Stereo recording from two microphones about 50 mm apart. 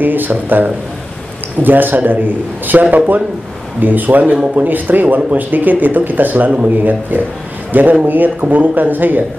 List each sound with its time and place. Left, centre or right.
0.0 s speech: right